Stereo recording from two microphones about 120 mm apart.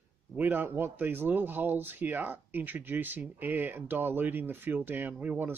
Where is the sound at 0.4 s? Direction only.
15° right (ahead or behind).